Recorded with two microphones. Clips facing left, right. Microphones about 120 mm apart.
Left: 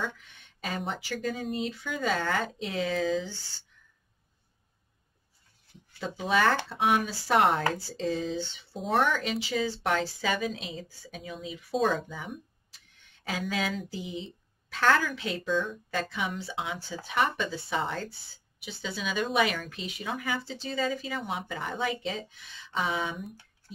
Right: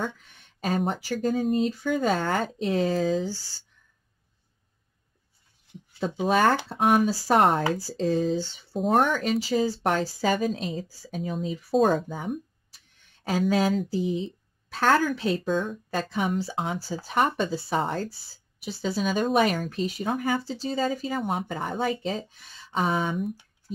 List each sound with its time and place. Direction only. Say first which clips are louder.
0.0 s speech: right 3 dB; 45° right (ahead or behind)
6.2 s speech: right 3 dB; 45° right (ahead or behind)